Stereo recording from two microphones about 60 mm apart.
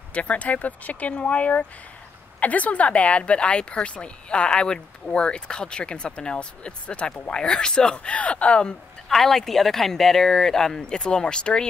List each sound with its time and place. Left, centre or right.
0.1 s speech: left
9.1 s speech: centre